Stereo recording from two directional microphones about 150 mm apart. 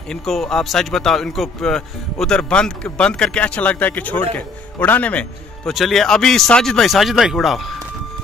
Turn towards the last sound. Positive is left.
turn(degrees=0)  # may be behind; listen again after turning